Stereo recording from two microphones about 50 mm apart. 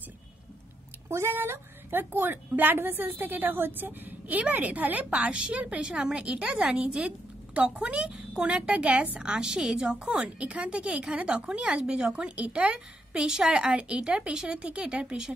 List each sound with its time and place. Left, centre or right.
1.0 s a woman's voice: right; by 15.3 s centre